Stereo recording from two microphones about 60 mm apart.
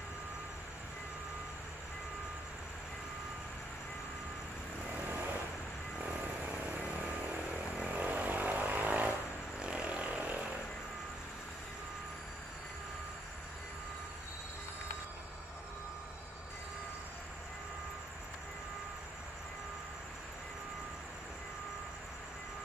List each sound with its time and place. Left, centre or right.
7.9 s vehicle: right